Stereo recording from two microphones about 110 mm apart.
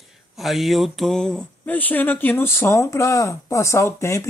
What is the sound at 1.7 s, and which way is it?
Speech, 15° left (ahead or behind).